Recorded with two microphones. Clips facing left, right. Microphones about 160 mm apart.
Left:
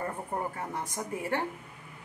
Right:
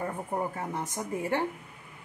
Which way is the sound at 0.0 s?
5° right (ahead or behind).